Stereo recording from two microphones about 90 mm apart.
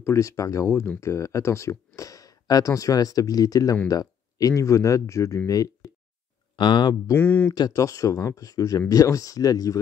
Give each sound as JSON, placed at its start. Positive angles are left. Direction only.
{"t": 0.0, "sound": "speech", "side_deg": 35}
{"t": 6.5, "sound": "speech", "side_deg": 60}
{"t": 7.2, "sound": "speech", "side_deg": 20}
{"t": 7.5, "sound": "speech", "side_deg": 45}